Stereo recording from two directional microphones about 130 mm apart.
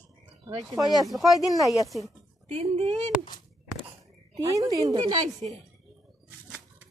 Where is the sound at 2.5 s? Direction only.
55° right (ahead or behind).